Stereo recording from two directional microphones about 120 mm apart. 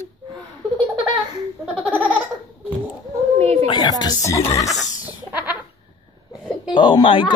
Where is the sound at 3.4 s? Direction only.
60° right (ahead or behind).